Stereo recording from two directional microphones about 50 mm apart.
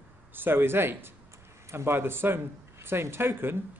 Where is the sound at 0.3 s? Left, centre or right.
Right.